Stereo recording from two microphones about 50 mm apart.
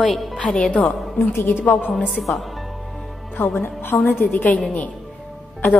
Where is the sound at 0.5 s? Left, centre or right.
Left.